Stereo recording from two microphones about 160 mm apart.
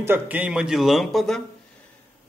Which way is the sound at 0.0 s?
10° right (ahead or behind).